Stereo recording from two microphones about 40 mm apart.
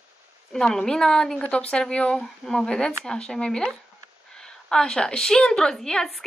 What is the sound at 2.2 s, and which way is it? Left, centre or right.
Speech, centre.